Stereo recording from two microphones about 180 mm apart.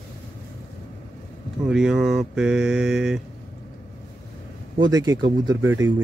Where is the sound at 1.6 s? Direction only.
5° right (ahead or behind).